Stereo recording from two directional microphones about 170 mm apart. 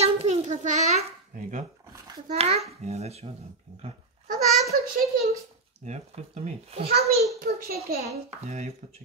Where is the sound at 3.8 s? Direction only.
40° right (ahead or behind).